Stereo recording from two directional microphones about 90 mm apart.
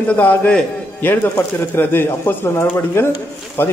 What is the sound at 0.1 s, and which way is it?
Speech, 20° left (ahead or behind).